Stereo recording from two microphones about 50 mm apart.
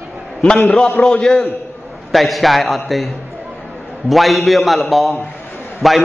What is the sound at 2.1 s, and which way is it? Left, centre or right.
A man's voice, centre.